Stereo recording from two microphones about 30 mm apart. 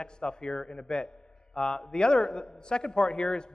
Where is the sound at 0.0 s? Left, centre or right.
Left.